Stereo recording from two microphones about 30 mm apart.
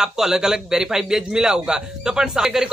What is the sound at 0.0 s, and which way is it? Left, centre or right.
Speech, centre.